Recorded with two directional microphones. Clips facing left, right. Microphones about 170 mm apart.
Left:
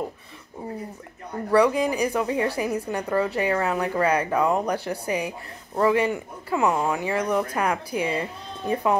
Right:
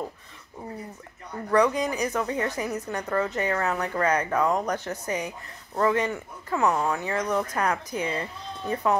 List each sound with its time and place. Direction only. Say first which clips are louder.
1.5 s speech: left 3 dB; 10° left (ahead or behind)